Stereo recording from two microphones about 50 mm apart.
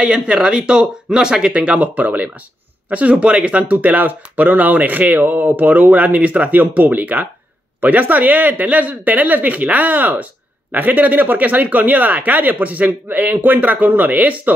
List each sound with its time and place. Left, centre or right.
0.0 s speech: centre; by 14.5 s right